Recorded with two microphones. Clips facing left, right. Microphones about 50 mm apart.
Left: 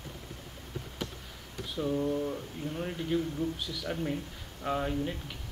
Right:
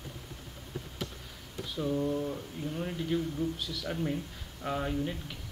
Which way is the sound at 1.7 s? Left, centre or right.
Centre.